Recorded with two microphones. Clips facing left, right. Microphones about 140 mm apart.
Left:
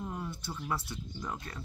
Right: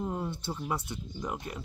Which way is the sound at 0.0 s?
25° right (ahead or behind).